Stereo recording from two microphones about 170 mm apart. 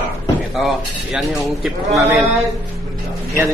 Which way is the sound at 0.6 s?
Centre (ahead or behind).